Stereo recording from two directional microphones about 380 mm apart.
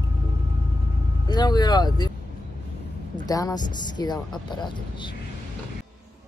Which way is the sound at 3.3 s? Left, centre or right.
Centre.